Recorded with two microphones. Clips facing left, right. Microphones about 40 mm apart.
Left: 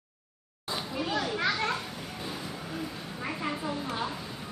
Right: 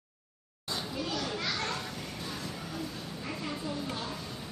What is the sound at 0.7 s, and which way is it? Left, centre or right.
Children playing, left.